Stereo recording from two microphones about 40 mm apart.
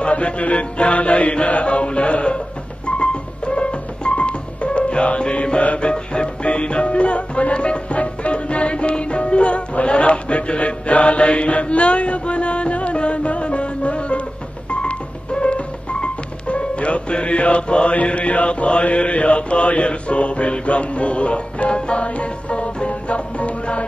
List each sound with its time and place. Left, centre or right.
0.0 s mantra: left
3.0 s music: left